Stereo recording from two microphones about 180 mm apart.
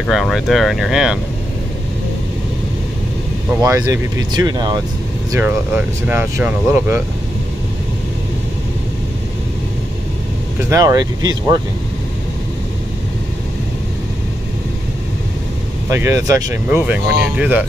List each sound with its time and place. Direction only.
0.0 s speech: centre (ahead or behind)
3.6 s speech: 15° right (ahead or behind)
5.7 s speech: 10° right (ahead or behind)
10.7 s speech: 20° right (ahead or behind)
15.9 s speech: 15° right (ahead or behind)